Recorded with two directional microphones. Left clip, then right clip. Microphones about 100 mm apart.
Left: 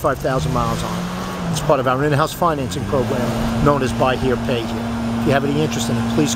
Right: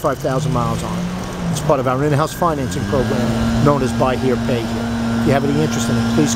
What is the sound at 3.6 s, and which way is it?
Speech, 5° left (ahead or behind).